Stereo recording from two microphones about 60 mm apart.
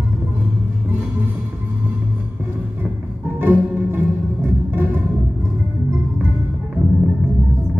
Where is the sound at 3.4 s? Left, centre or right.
Right.